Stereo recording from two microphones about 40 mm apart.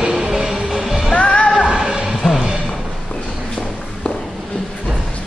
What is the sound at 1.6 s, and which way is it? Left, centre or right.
Music, centre.